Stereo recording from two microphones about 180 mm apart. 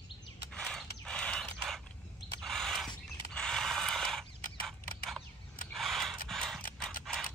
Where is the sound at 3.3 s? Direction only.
5° left (ahead or behind).